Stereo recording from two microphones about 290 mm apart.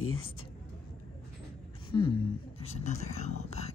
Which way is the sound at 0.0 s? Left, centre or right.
Left.